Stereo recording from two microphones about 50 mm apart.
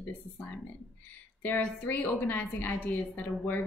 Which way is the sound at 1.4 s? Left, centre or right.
Left.